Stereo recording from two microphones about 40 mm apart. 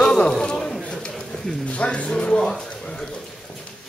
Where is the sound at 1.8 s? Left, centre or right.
Left.